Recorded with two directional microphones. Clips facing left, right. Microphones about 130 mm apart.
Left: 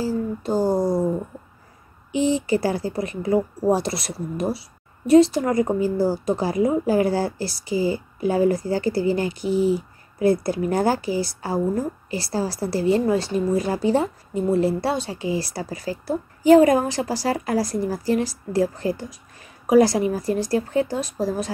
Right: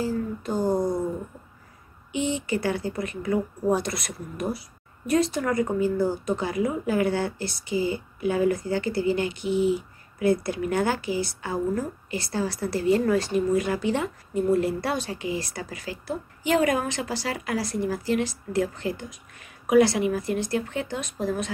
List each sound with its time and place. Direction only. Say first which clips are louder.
0.0 s speech: left 3 dB; 35° left (ahead or behind)
2.1 s speech: left 6 dB; 35° left (ahead or behind)